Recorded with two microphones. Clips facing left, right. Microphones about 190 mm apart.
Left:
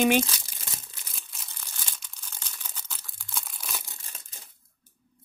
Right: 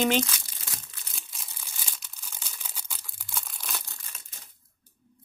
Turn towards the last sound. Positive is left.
turn(degrees=5)  # may be behind; listen again after turning